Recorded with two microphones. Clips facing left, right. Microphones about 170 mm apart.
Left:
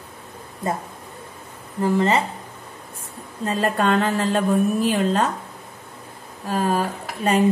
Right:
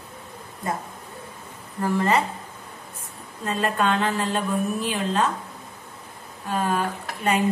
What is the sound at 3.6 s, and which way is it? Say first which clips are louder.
Speech: left 3 dB; 40° left (ahead or behind).